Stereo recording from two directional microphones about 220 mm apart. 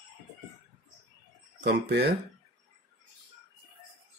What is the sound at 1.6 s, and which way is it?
Speech, 50° right (ahead or behind).